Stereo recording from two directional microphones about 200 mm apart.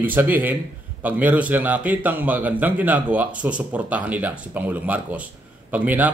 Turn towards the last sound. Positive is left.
turn(degrees=-10)  # may be behind; listen again after turning